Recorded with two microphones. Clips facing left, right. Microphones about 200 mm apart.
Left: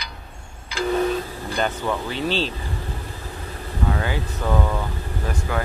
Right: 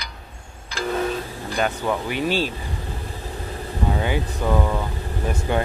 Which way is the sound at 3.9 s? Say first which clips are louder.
Right 3 dB; 20° right (ahead or behind).